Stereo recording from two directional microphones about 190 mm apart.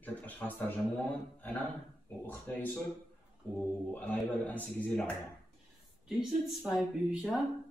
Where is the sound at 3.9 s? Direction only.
5° left (ahead or behind).